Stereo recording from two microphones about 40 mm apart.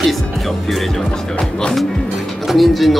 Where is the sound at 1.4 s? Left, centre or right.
Left.